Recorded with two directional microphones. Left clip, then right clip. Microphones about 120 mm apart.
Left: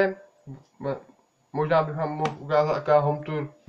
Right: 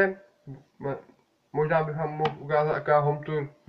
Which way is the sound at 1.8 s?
15° left (ahead or behind).